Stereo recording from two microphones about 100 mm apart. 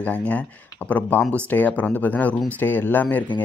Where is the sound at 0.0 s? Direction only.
15° left (ahead or behind).